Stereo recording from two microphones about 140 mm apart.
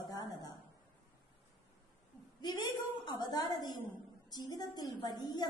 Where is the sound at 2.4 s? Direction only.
30° left (ahead or behind).